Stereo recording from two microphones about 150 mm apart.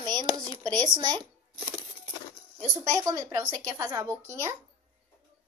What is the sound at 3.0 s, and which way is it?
Speech, 20° right (ahead or behind).